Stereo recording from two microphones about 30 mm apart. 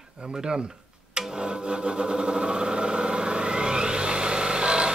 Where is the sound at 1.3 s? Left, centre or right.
Right.